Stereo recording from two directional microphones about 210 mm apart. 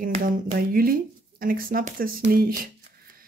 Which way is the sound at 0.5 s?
45° right (ahead or behind).